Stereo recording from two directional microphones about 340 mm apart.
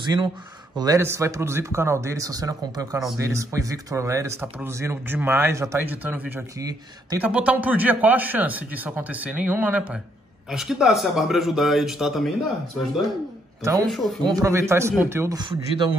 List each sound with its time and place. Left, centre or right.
0.7 s a man's voice: centre
13.6 s a man's voice: centre